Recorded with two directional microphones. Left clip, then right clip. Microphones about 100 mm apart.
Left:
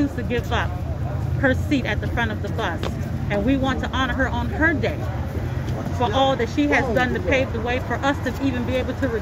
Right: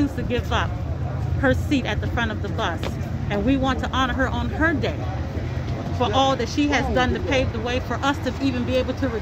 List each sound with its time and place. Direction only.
0.3 s speech: 30° right (ahead or behind)
5.9 s speech: 35° right (ahead or behind)